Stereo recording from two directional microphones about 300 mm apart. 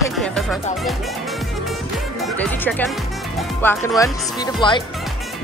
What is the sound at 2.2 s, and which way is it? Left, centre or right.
Speech, centre.